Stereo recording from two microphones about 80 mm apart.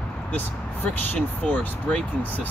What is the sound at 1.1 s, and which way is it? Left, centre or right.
Speech, centre.